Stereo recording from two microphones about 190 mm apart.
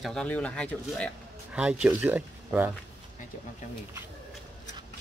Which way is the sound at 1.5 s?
5° right (ahead or behind).